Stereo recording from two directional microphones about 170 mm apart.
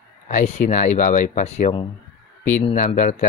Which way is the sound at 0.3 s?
45° left (ahead or behind).